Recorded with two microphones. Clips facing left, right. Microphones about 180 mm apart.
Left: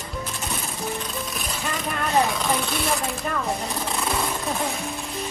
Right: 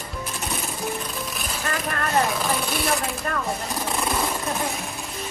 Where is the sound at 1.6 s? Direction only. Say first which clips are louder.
Right 1 dB; centre (ahead or behind).